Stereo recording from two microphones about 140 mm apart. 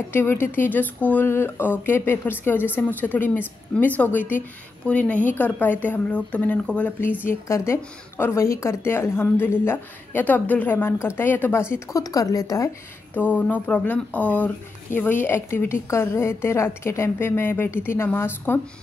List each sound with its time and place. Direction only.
0.1 s speech: 15° left (ahead or behind)
13.1 s speech: 10° left (ahead or behind)